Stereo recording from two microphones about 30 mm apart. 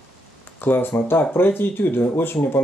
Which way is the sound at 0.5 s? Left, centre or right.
Left.